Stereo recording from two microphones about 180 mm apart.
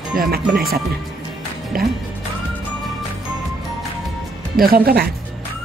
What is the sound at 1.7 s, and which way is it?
Speech, 55° right (ahead or behind).